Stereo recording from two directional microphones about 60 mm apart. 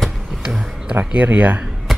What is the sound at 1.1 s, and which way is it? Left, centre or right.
Speech, right.